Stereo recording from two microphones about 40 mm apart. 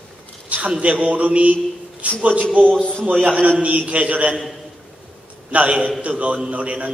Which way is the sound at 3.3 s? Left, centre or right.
Right.